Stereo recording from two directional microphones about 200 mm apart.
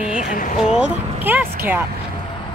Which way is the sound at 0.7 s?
10° right (ahead or behind).